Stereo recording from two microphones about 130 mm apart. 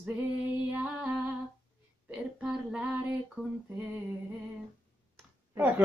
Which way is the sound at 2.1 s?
10° right (ahead or behind).